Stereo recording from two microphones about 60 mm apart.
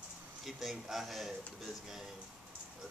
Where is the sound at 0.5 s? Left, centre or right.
Centre.